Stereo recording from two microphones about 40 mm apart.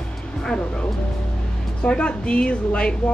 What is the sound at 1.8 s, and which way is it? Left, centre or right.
Speech, left.